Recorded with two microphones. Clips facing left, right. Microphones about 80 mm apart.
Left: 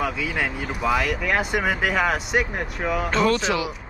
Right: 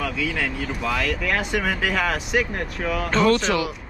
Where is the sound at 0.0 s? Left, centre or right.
Centre.